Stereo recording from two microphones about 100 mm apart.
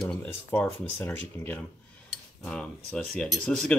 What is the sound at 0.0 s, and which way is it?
Speech, 10° left (ahead or behind).